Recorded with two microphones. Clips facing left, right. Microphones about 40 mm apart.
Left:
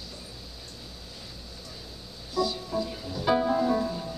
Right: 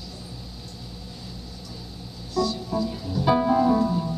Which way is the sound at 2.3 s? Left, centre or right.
Centre.